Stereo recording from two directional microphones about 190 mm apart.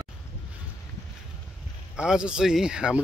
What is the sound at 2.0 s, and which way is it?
Speech, 5° right (ahead or behind).